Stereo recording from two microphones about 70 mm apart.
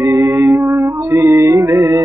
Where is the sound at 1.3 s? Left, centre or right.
Right.